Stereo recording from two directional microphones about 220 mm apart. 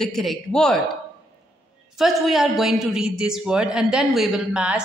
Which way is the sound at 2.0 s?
Centre (ahead or behind).